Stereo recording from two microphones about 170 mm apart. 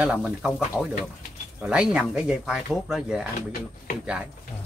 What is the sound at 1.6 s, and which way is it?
Speech, 5° right (ahead or behind).